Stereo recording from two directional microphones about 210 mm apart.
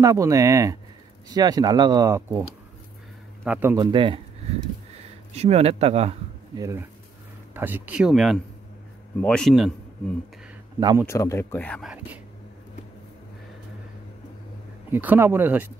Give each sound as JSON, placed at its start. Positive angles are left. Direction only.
{"t": 0.0, "sound": "speech", "side_deg": -15}
{"t": 3.4, "sound": "speech", "side_deg": -10}
{"t": 3.8, "sound": "speech", "side_deg": -25}
{"t": 5.3, "sound": "speech", "side_deg": -30}
{"t": 6.6, "sound": "speech", "side_deg": -15}
{"t": 10.8, "sound": "speech", "side_deg": -20}
{"t": 11.1, "sound": "speech", "side_deg": 15}
{"t": 14.9, "sound": "speech", "side_deg": -10}